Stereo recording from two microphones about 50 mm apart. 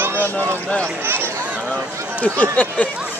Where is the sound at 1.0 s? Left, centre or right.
Right.